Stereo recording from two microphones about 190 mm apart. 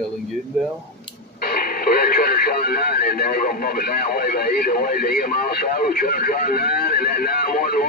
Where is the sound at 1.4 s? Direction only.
50° left (ahead or behind).